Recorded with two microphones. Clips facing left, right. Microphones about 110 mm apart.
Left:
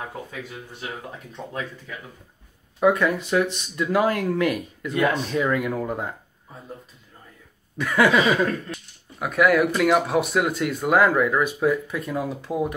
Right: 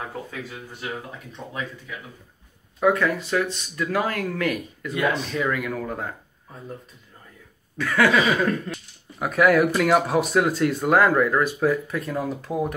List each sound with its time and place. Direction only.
2.8 s speech: 20° left (ahead or behind)
7.7 s a sound: 20° left (ahead or behind)
8.4 s speech: centre (ahead or behind)